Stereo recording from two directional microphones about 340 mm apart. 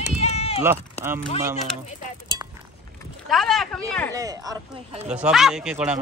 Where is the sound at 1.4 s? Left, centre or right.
Centre.